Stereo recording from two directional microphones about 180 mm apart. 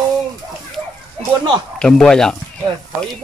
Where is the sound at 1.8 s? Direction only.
5° left (ahead or behind).